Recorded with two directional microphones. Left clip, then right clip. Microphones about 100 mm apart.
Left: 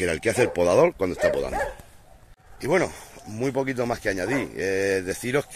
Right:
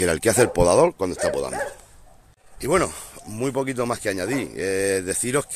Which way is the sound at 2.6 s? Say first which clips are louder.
Right 2 dB; 35° right (ahead or behind).